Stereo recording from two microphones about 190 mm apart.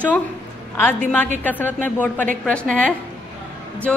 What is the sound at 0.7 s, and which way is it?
A woman's voice, 10° left (ahead or behind).